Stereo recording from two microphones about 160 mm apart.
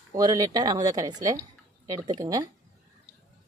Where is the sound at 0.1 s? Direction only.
25° right (ahead or behind).